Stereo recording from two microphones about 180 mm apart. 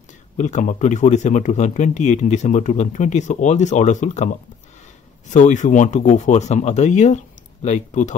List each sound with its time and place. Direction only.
0.4 s speech: 40° left (ahead or behind)